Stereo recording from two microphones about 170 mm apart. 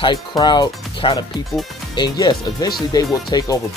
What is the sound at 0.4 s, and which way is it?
Speech, 25° left (ahead or behind).